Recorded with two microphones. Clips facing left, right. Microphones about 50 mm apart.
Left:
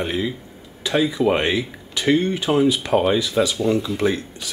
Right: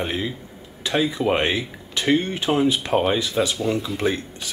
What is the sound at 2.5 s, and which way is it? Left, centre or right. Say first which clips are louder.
Speech: left 2 dB; centre.